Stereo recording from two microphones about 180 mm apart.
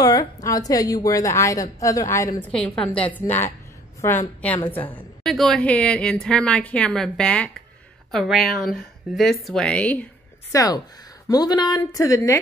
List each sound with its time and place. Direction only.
0.0 s a woman's voice: 20° left (ahead or behind)
10.5 s speech: 20° left (ahead or behind)